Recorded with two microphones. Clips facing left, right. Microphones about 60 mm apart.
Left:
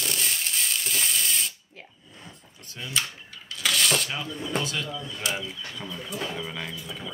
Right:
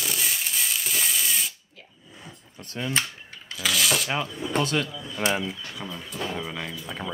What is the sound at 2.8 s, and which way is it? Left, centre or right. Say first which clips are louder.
Speech: right 8 dB; right.